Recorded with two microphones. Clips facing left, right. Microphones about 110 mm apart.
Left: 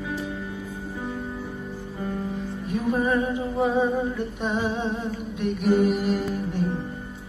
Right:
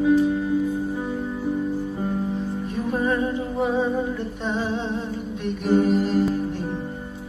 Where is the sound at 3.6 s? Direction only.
15° left (ahead or behind).